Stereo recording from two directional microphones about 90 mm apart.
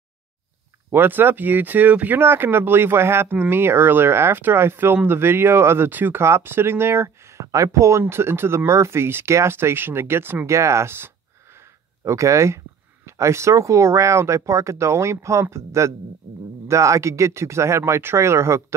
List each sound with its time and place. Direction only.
0.9 s speech: 25° right (ahead or behind)